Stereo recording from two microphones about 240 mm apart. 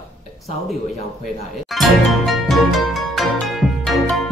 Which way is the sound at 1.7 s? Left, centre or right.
Centre.